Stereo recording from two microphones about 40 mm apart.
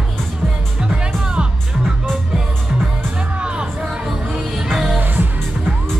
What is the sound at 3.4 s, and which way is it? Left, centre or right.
Music, right.